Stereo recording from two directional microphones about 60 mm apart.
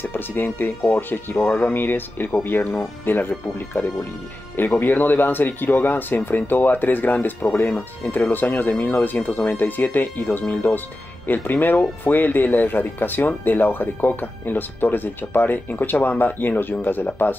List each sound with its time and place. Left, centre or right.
0.0 s speech: left
4.6 s speech: left